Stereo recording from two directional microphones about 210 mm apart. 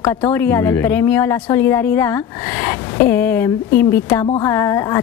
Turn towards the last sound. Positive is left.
turn(degrees=15)  # may be behind; listen again after turning